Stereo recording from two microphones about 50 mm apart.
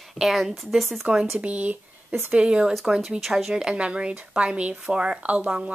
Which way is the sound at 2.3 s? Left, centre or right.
Centre.